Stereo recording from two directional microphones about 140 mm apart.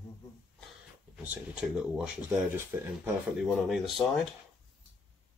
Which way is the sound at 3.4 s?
Centre (ahead or behind).